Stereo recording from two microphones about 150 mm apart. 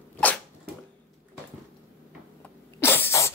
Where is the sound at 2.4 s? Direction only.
15° left (ahead or behind).